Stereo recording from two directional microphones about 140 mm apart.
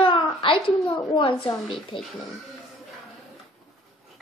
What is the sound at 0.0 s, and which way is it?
A woman's voice, 40° left (ahead or behind).